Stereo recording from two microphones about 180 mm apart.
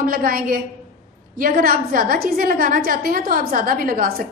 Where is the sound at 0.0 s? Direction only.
50° right (ahead or behind).